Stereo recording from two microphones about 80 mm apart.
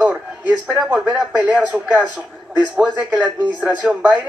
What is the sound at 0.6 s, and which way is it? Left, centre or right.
Speech, centre.